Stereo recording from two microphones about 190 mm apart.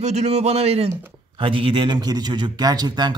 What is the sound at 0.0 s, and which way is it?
A man's voice, 35° right (ahead or behind).